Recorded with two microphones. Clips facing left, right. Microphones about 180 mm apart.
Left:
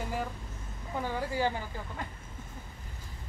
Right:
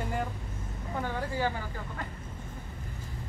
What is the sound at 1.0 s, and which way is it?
Speech, 10° left (ahead or behind).